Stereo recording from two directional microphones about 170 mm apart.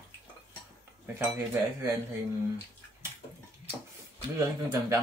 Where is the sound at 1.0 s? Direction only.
15° right (ahead or behind).